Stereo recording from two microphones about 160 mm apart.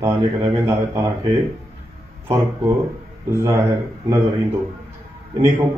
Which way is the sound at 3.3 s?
20° right (ahead or behind).